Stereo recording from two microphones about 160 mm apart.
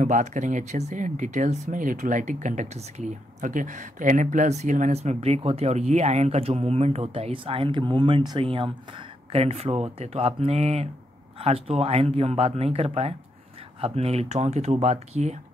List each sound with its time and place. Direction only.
0.0 s speech: 50° right (ahead or behind)